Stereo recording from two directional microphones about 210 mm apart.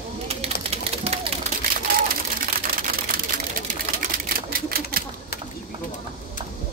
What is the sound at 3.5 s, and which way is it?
Typewriter, 45° right (ahead or behind).